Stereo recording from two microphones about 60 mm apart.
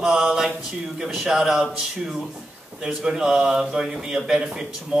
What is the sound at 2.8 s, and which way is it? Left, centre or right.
Speech, centre.